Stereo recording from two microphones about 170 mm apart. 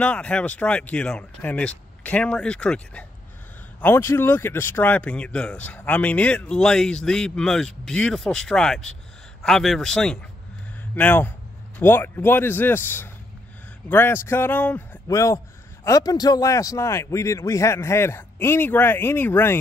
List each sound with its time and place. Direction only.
0.0 s a man's voice: 5° left (ahead or behind)